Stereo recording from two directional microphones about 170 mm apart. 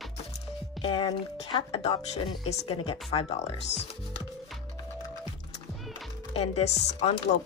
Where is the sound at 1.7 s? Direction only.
35° left (ahead or behind).